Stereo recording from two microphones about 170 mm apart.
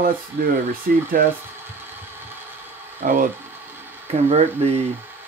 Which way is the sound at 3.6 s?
10° right (ahead or behind).